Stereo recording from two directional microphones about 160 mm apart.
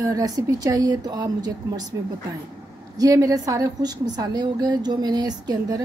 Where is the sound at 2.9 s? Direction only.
20° right (ahead or behind).